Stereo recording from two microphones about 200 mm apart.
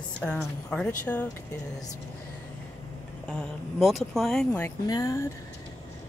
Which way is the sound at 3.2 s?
Centre (ahead or behind).